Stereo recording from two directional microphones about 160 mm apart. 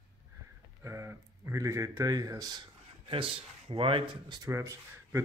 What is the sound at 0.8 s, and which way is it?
Speech, 20° right (ahead or behind).